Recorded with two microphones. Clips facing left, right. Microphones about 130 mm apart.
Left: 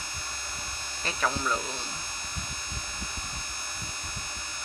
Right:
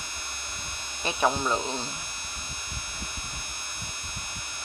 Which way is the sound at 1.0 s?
20° right (ahead or behind).